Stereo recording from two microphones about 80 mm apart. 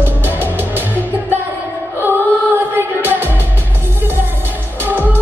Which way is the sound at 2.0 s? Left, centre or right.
Right.